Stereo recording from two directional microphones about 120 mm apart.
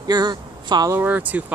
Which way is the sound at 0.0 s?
35° right (ahead or behind).